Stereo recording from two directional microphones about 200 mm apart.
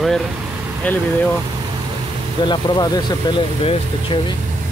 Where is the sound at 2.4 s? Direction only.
20° left (ahead or behind).